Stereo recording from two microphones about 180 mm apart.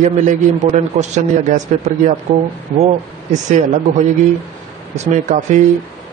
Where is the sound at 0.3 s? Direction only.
40° right (ahead or behind).